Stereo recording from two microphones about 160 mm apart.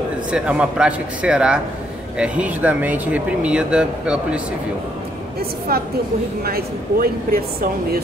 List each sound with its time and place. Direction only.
0.3 s speech: 5° right (ahead or behind)
5.7 s speech: 70° right (ahead or behind)